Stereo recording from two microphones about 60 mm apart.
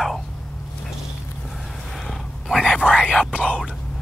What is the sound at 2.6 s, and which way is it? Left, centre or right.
Speech, centre.